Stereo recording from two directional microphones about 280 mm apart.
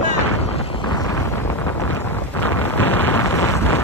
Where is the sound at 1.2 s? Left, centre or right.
Centre.